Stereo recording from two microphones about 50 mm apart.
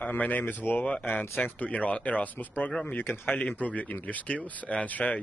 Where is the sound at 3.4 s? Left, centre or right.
Left.